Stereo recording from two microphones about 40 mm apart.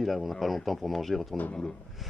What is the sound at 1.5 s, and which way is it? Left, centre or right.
Speech, centre.